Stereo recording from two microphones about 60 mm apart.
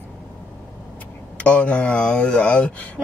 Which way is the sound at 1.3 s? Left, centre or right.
Left.